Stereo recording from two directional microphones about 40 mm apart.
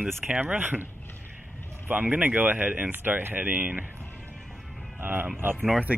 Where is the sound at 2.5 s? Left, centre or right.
Right.